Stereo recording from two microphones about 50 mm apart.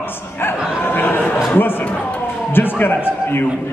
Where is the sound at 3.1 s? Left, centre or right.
Left.